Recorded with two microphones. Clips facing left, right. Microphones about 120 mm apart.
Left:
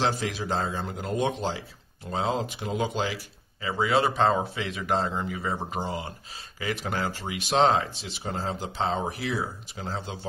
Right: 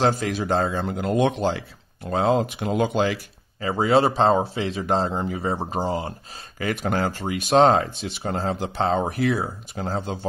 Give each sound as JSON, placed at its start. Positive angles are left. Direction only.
{"t": 0.0, "sound": "a man's voice", "side_deg": -50}
{"t": 3.6, "sound": "speech", "side_deg": -40}
{"t": 6.6, "sound": "speech", "side_deg": -50}